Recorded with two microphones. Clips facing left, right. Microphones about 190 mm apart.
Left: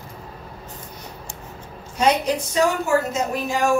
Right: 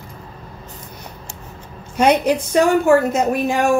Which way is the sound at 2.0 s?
60° right (ahead or behind).